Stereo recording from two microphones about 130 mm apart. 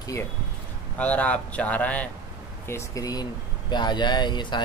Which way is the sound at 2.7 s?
25° left (ahead or behind).